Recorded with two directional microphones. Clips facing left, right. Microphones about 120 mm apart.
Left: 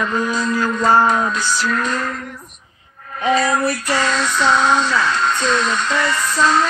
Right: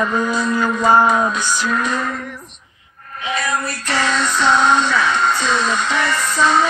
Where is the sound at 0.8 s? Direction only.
10° right (ahead or behind).